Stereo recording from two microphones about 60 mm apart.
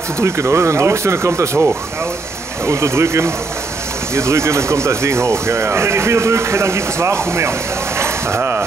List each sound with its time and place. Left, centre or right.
0.2 s speech: right